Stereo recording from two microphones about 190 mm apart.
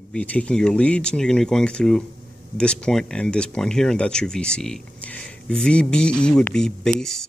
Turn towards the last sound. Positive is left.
turn(degrees=5)  # may be behind; listen again after turning